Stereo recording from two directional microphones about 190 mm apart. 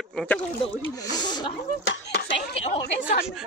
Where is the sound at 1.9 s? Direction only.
65° left (ahead or behind).